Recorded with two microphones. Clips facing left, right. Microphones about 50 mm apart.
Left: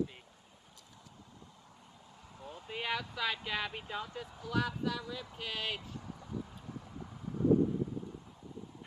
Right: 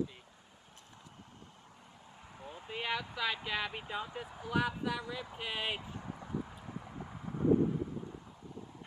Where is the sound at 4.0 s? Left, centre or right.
Centre.